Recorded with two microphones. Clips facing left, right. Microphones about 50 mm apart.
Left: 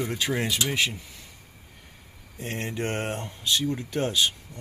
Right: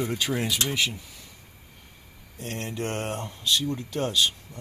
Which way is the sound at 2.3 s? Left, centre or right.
Centre.